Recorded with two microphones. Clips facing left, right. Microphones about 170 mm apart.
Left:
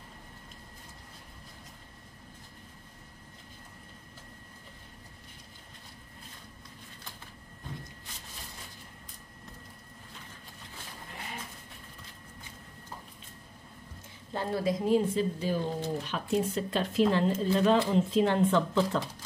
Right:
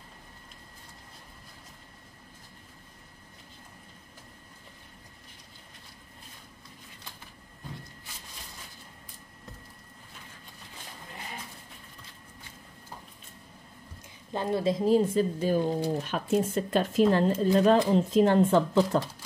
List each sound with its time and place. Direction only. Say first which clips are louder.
14.3 s a woman's voice: right 3 dB; 20° right (ahead or behind)
15.1 s speech: right 4 dB; 45° right (ahead or behind)